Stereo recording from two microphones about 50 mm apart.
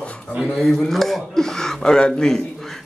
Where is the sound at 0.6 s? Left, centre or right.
Centre.